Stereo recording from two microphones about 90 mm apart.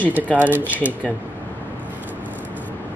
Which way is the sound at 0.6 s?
20° left (ahead or behind).